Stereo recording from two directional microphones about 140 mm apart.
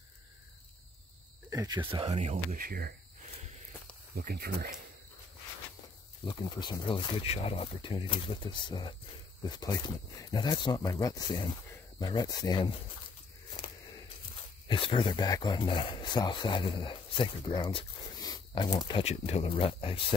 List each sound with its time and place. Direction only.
1.5 s speech: 25° right (ahead or behind)
1.9 s speech: 40° right (ahead or behind)
2.5 s speech: 90° right
4.2 s speech: 90° right
6.2 s speech: 35° left (ahead or behind)
14.7 s speech: 40° left (ahead or behind)
15.2 s speech: 30° left (ahead or behind)
19.0 s speech: 45° left (ahead or behind)